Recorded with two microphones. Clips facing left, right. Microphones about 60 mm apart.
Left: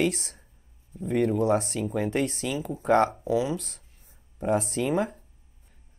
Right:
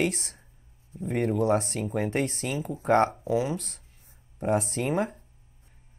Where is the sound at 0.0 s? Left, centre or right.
Right.